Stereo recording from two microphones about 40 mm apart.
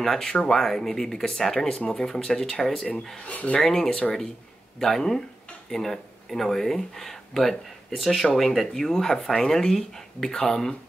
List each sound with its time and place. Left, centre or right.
0.0 s speech: centre
3.3 s speech: left
3.6 s speech: centre